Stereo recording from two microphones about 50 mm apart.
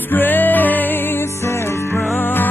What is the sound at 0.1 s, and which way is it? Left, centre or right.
Music, left.